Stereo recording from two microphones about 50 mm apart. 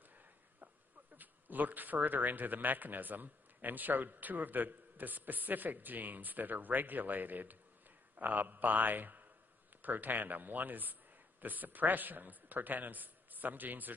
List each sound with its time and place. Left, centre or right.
1.1 s speech: right